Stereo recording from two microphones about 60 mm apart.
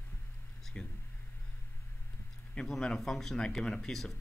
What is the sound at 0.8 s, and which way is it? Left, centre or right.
Speech, centre.